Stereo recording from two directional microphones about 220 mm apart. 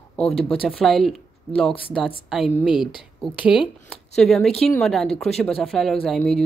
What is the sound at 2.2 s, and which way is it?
Speech, centre (ahead or behind).